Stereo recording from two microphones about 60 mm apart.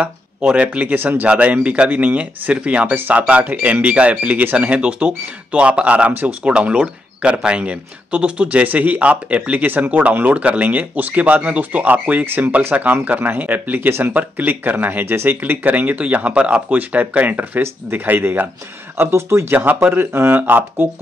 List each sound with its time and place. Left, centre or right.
0.6 s speech: right
0.9 s speech: right
1.2 s speech: right
2.9 s speech: right
18.9 s speech: right
19.5 s speech: right